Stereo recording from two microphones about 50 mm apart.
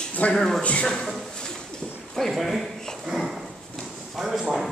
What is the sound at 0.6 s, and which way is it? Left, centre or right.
Speech, left.